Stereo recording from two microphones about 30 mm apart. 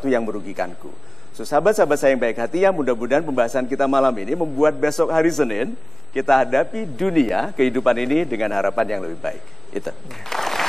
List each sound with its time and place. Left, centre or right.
0.0 s a man's voice: centre